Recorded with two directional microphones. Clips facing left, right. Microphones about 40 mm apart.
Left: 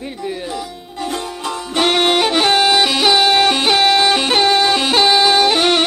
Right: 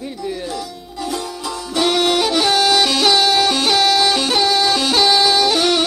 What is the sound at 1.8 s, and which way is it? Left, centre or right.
Music, left.